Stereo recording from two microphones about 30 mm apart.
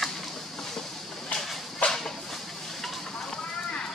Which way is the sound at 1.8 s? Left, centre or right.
Left.